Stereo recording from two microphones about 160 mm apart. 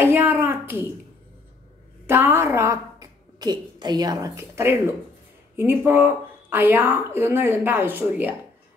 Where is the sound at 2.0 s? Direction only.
15° right (ahead or behind).